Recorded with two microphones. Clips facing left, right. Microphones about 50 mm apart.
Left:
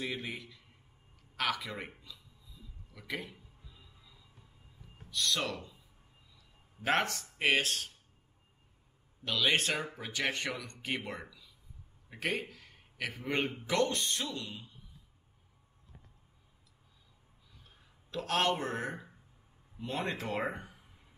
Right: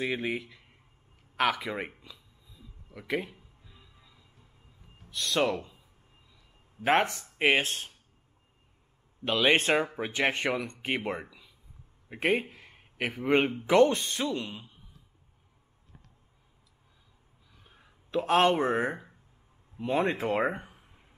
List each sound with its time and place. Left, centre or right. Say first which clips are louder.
0.0 s speech: right 8 dB; right
2.9 s speech: right 8 dB; right
3.3 s music: right 1 dB; centre
5.1 s speech: right 6 dB; right
9.2 s a man's voice: right 6 dB; right
17.6 s speech: right 4 dB; right
19.8 s speech: right 9 dB; right